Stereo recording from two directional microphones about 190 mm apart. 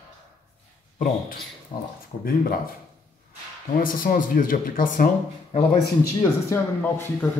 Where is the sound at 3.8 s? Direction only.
45° left (ahead or behind).